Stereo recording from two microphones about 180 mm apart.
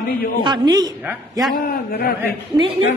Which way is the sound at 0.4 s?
25° right (ahead or behind).